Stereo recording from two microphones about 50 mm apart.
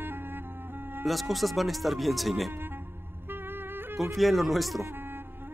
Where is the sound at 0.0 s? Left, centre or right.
Right.